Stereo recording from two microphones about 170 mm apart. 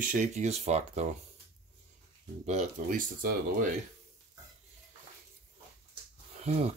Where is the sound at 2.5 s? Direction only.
45° right (ahead or behind).